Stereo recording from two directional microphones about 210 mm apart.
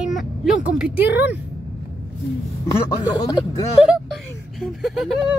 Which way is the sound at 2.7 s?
20° left (ahead or behind).